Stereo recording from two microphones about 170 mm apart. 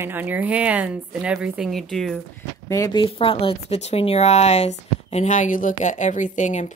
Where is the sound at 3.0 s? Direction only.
35° left (ahead or behind).